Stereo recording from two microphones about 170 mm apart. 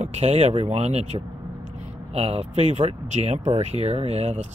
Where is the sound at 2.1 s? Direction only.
35° right (ahead or behind).